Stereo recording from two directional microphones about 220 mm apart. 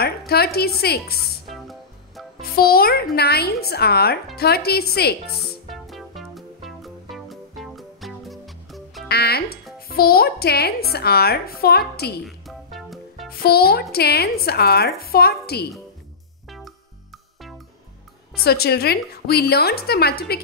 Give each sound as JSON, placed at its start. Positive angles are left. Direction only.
{"t": 0.3, "sound": "a woman's voice", "side_deg": 45}
{"t": 1.5, "sound": "music", "side_deg": 0}
{"t": 2.4, "sound": "a woman's voice", "side_deg": 45}
{"t": 5.3, "sound": "music", "side_deg": 0}
{"t": 9.1, "sound": "a woman's voice", "side_deg": 45}
{"t": 12.3, "sound": "music", "side_deg": 0}
{"t": 13.3, "sound": "a woman's voice", "side_deg": 45}
{"t": 16.4, "sound": "music", "side_deg": 0}
{"t": 18.4, "sound": "a woman's voice", "side_deg": 45}